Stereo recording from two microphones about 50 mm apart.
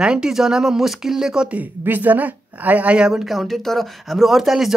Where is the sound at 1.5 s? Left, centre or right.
Right.